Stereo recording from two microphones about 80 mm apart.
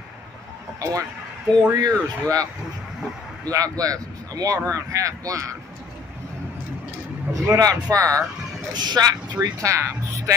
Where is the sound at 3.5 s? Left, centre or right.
Right.